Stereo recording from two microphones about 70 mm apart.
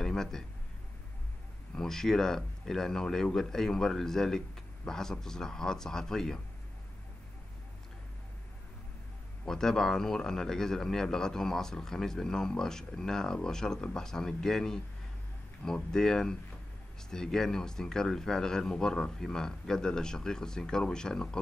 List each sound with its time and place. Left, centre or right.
0.0 s a sound: centre
1.8 s a man's voice: centre
9.4 s a man's voice: centre